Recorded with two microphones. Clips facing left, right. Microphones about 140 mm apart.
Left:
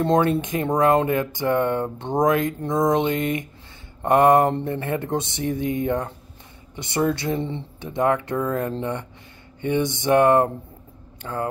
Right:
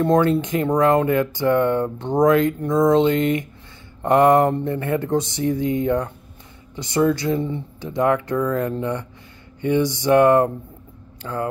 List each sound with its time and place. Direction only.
0.0 s speech: 20° left (ahead or behind)
6.7 s a sound: 20° left (ahead or behind)
7.0 s speech: 25° left (ahead or behind)